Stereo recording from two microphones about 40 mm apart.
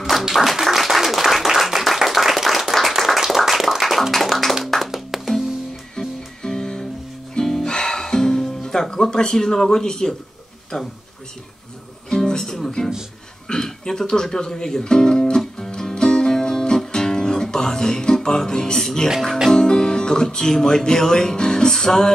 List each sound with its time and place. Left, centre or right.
0.3 s clapping: centre
4.9 s music: centre
5.9 s music: centre
12.1 s music: centre
13.5 s speech: centre
15.7 s music: centre
19.5 s speech: centre